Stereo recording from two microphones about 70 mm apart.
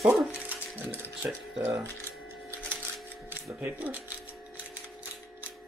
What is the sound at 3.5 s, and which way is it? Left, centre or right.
Speech, right.